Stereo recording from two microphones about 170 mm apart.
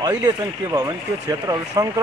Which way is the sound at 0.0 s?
20° right (ahead or behind).